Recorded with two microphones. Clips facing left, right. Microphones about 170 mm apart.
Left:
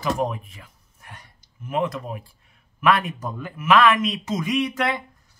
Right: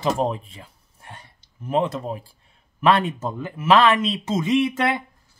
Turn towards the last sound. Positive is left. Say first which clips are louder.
# right 3 dB
turn(degrees=-25)  # may be behind; listen again after turning